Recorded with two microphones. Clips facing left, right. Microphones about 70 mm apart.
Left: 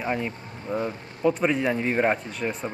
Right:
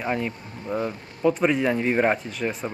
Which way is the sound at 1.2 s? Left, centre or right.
Centre.